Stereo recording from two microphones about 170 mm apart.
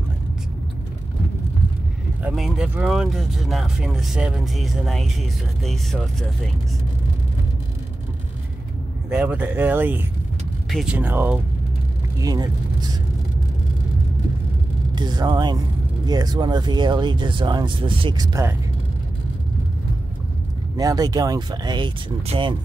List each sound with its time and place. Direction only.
2.2 s speech: centre (ahead or behind)
9.1 s speech: 10° right (ahead or behind)
12.2 s speech: 25° right (ahead or behind)
15.0 s speech: 25° right (ahead or behind)
20.7 s speech: 20° right (ahead or behind)